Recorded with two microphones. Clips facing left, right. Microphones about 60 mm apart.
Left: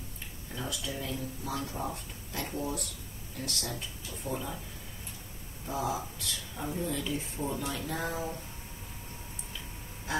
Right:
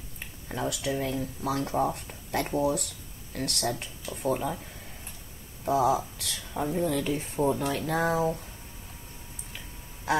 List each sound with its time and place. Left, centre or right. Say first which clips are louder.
0.2 s speech: right 8 dB; right
5.7 s speech: right 9 dB; right
6.6 s speech: right 7 dB; right
10.1 s quack: right 7 dB; right